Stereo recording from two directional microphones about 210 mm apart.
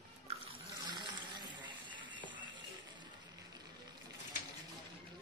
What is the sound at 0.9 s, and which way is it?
Water, 20° right (ahead or behind).